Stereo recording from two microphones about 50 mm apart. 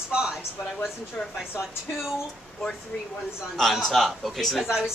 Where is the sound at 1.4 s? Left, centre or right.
Centre.